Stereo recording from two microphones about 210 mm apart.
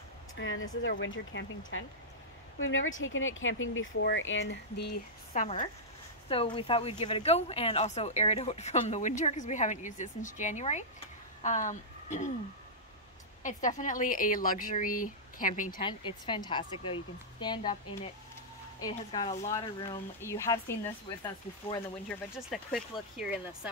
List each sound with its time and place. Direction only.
0.4 s speech: 65° left (ahead or behind)
5.3 s speech: 35° left (ahead or behind)
6.2 s speech: 25° left (ahead or behind)
13.4 s speech: 35° left (ahead or behind)
15.8 s speech: 25° left (ahead or behind)
22.5 s speech: centre (ahead or behind)